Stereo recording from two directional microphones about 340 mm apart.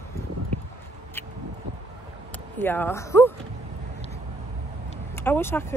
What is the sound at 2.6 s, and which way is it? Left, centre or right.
Speech, centre.